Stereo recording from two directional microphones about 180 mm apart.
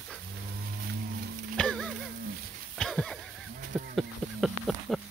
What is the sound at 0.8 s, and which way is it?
Music, 55° right (ahead or behind).